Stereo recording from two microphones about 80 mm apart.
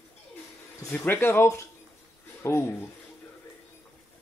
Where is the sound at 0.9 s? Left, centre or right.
Left.